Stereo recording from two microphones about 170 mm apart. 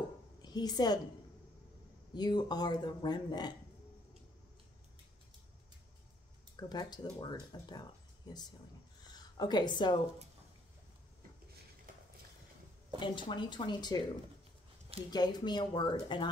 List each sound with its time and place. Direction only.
0.4 s a woman's voice: 25° left (ahead or behind)
2.1 s speech: 25° left (ahead or behind)
6.5 s speech: 25° left (ahead or behind)
13.0 s speech: 25° left (ahead or behind)